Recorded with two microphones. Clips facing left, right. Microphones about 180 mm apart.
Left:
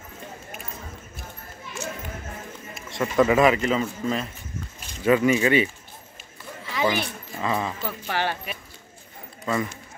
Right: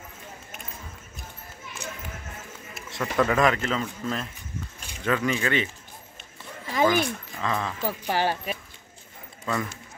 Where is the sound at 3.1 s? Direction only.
5° left (ahead or behind).